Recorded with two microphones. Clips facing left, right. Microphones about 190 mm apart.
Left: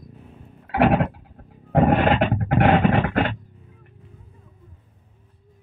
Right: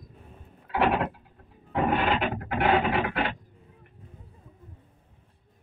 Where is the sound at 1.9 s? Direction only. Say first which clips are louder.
Left 7 dB; 55° left (ahead or behind).